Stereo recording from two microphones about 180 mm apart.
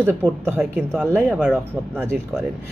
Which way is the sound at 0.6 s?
5° right (ahead or behind).